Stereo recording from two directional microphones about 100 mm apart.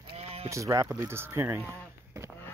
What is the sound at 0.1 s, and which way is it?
Sheep, 90° right.